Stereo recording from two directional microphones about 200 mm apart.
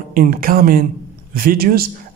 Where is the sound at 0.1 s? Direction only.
45° right (ahead or behind).